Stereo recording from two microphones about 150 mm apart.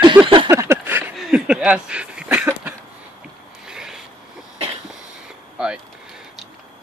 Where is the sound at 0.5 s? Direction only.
15° right (ahead or behind).